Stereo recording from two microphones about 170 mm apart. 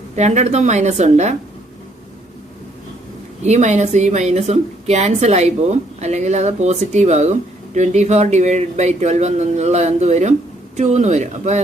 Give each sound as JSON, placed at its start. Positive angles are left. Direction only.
{"t": 0.1, "sound": "a woman's voice", "side_deg": -40}
{"t": 3.4, "sound": "a woman's voice", "side_deg": -40}